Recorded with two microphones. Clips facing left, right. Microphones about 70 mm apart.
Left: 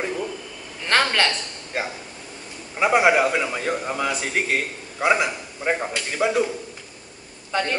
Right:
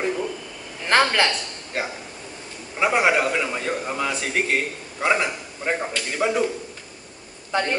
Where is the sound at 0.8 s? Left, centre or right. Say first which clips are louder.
Right 1 dB; centre.